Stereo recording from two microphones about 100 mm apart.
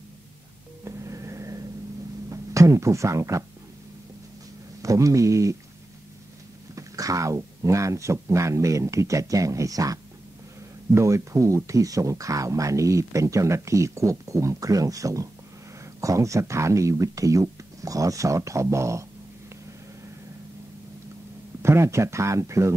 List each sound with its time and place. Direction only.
0.8 s vehicle: 30° right (ahead or behind)
2.2 s speech: 30° right (ahead or behind)
4.8 s speech: 35° right (ahead or behind)
6.7 s speech: 35° right (ahead or behind)
11.0 s speech: 30° right (ahead or behind)
21.6 s speech: 25° right (ahead or behind)